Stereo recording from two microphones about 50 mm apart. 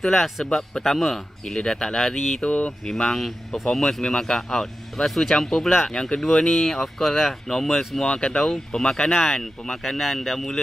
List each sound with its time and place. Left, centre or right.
0.0 s speech: centre
1.4 s speech: centre
2.4 s speech: left
2.8 s speech: centre